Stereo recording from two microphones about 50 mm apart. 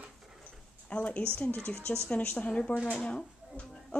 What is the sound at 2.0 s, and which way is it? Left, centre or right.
Speech, left.